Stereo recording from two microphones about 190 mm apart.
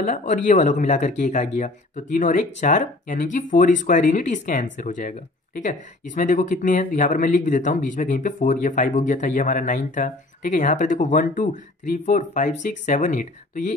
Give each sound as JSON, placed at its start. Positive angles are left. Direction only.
{"t": 0.0, "sound": "speech", "side_deg": 40}